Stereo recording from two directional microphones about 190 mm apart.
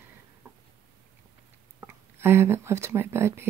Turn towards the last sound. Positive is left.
turn(degrees=-15)  # may be behind; listen again after turning